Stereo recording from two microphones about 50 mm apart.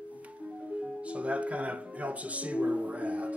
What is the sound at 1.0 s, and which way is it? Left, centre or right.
Music, right.